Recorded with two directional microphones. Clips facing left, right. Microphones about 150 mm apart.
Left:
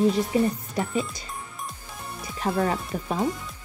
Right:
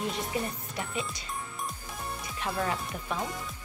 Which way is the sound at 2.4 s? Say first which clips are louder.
Left 7 dB; 40° left (ahead or behind).